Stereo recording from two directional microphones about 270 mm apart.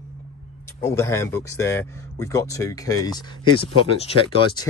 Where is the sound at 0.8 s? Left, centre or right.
Centre.